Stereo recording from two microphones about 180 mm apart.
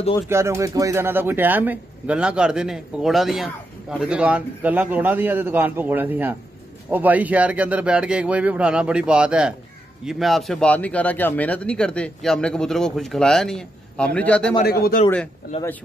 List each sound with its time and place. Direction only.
0.3 s speech: 15° right (ahead or behind); by 14.5 s 5° left (ahead or behind)
14.6 s speech: 55° left (ahead or behind)